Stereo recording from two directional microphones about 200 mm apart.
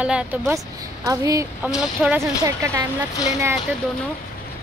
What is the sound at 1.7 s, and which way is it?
Speech, 5° right (ahead or behind).